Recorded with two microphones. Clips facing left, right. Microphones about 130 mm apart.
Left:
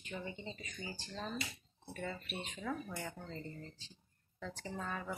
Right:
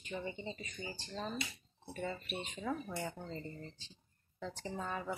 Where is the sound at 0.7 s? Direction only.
20° right (ahead or behind).